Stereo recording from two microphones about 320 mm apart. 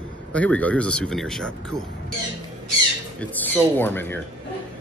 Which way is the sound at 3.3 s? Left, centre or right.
Centre.